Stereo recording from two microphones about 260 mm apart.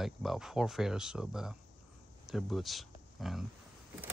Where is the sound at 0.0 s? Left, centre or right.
Centre.